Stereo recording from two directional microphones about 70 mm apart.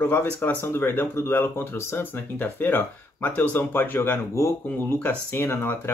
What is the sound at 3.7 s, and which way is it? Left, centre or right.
Speech, left.